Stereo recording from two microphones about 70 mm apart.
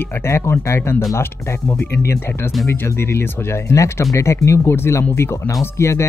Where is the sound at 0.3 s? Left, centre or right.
Left.